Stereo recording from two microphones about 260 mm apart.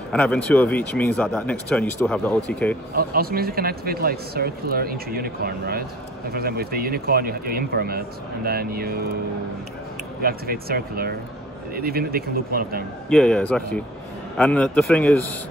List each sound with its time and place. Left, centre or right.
0.1 s speech: centre
2.9 s speech: right
10.2 s speech: right
13.1 s speech: centre